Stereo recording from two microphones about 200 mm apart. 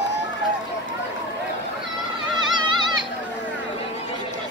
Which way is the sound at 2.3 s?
25° right (ahead or behind).